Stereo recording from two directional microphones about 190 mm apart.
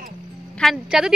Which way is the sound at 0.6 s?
5° right (ahead or behind).